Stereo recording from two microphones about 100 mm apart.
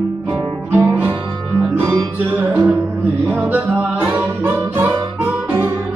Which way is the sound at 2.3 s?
15° right (ahead or behind).